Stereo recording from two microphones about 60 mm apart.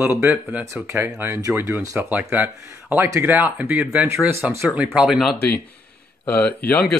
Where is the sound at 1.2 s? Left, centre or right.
Right.